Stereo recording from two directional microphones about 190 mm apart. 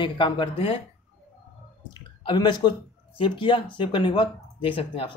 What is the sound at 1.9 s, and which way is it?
Drip, 25° left (ahead or behind).